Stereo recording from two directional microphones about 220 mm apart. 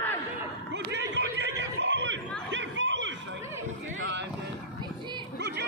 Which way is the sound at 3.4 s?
10° right (ahead or behind).